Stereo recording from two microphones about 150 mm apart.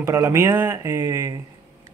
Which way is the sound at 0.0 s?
20° right (ahead or behind).